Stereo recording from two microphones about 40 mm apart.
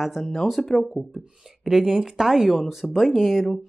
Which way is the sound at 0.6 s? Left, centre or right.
Centre.